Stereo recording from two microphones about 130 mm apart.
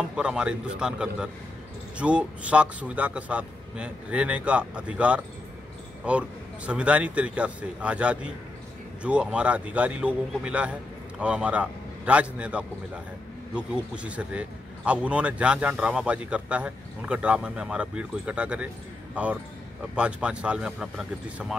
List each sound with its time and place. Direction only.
0.1 s speech: 5° right (ahead or behind)
20.0 s speech: 10° right (ahead or behind)